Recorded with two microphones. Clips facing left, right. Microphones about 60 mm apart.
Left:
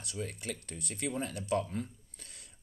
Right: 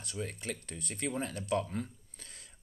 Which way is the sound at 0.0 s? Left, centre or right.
Right.